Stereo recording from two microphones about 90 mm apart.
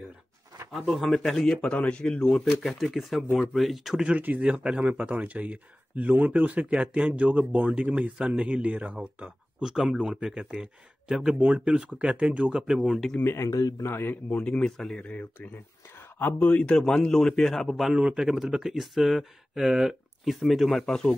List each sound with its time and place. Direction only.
0.7 s speech: centre (ahead or behind)
1.7 s speech: 15° left (ahead or behind); by 13.1 s 5° right (ahead or behind)
13.2 s speech: 30° left (ahead or behind)
13.8 s speech: 25° left (ahead or behind)
14.4 s speech: 10° left (ahead or behind)